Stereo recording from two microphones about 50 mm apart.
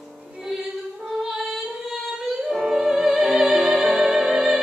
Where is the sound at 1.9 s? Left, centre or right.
Centre.